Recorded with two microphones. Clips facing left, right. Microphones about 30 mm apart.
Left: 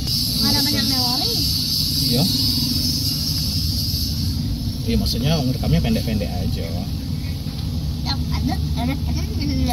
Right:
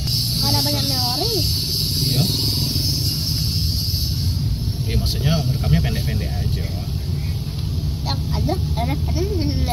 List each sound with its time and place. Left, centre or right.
0.7 s snake: left
2.0 s vehicle: left
4.9 s speech: centre